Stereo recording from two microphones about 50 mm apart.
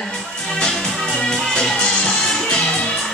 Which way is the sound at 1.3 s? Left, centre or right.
Centre.